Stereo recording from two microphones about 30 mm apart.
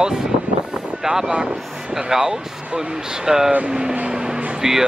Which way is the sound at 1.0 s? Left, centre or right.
Centre.